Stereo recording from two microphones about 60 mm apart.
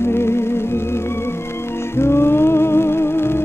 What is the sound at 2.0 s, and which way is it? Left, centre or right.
Music, left.